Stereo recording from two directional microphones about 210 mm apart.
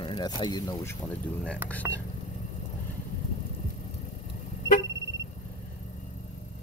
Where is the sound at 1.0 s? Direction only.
5° left (ahead or behind).